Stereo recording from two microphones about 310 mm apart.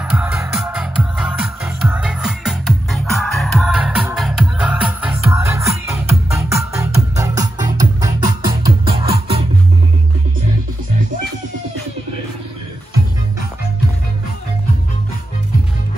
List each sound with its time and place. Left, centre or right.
0.0 s music: centre